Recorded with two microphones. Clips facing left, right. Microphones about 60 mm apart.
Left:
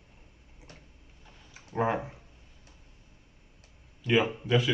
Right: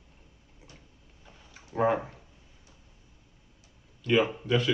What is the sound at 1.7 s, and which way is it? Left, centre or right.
Speech, centre.